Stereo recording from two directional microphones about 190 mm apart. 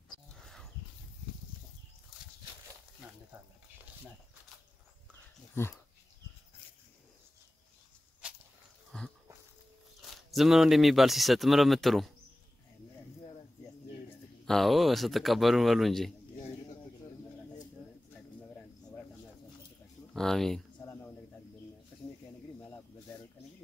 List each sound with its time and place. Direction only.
0.3 s a sound: centre (ahead or behind)
5.5 s speech: 10° left (ahead or behind)
8.9 s a sound: 5° left (ahead or behind)
10.0 s speech: centre (ahead or behind)
14.4 s a man's voice: centre (ahead or behind)
20.2 s speech: centre (ahead or behind)
20.8 s cricket: 15° left (ahead or behind)
22.6 s snake: 20° left (ahead or behind)